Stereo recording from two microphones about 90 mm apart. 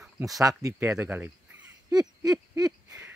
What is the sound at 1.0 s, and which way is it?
Speech, 20° right (ahead or behind).